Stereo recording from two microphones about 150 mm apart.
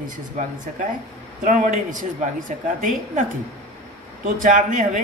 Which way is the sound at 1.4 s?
60° right (ahead or behind).